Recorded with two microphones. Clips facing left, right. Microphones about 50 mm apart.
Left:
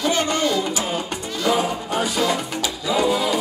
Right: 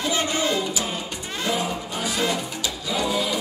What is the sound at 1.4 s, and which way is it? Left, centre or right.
Music, left.